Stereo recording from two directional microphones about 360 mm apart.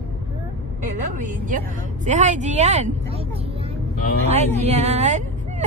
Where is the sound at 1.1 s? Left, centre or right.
Right.